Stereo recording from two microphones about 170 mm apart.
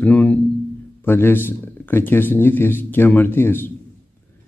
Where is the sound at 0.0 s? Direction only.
10° left (ahead or behind).